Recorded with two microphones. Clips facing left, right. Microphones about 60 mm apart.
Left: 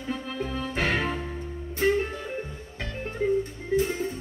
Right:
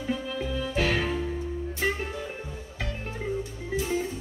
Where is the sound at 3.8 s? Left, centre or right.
Left.